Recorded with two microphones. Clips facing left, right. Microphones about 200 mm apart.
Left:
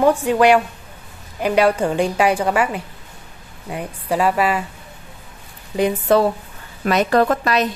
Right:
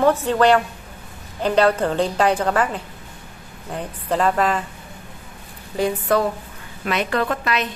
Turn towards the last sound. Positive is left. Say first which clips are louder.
# left 6 dB
turn(degrees=40)  # may be behind; listen again after turning